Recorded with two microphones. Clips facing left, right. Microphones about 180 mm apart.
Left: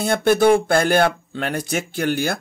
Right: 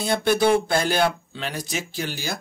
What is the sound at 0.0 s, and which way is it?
Speech, 50° left (ahead or behind).